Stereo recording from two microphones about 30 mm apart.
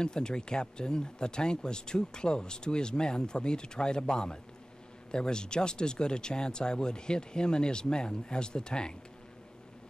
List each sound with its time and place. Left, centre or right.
0.0 s speech: left